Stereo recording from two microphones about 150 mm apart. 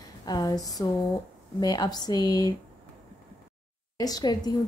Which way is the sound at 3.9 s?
25° left (ahead or behind).